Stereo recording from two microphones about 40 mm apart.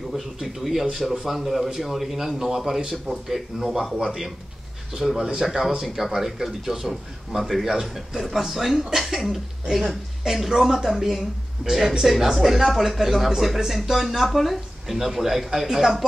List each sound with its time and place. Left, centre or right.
0.1 s a man's voice: centre
11.6 s speech: right
12.0 s speech: centre